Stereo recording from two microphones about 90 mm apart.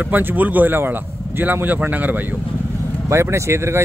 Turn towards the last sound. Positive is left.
turn(degrees=-30)  # may be behind; listen again after turning